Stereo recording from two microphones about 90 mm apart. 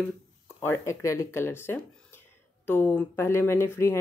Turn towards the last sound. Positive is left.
turn(degrees=30)  # may be behind; listen again after turning